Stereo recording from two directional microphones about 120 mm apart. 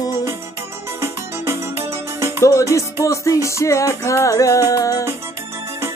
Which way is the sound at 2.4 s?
25° left (ahead or behind).